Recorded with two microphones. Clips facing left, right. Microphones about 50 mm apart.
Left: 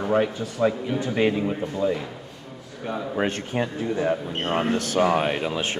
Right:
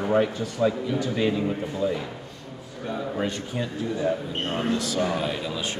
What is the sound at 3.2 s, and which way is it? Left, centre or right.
Speech, left.